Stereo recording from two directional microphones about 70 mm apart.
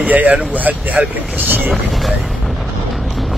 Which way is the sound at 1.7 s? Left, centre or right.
Centre.